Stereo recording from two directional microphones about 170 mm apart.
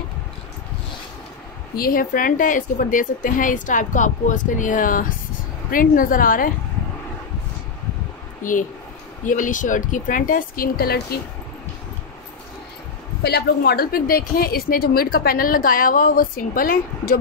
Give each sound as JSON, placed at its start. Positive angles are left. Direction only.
{"t": 1.8, "sound": "a woman's voice", "side_deg": 60}
{"t": 8.4, "sound": "a woman's voice", "side_deg": 50}
{"t": 13.2, "sound": "a woman's voice", "side_deg": 70}